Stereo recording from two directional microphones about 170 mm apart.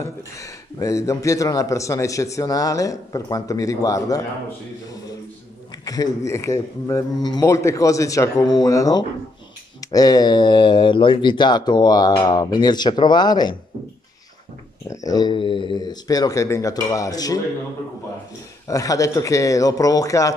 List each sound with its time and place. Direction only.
0.0 s a man's voice: 20° left (ahead or behind)
5.9 s a man's voice: 20° left (ahead or behind)
14.9 s a man's voice: 20° left (ahead or behind)
18.7 s a man's voice: 20° left (ahead or behind)